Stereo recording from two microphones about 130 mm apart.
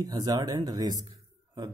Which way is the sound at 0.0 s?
30° right (ahead or behind).